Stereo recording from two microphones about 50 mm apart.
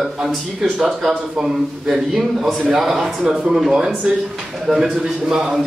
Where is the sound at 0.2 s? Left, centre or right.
Centre.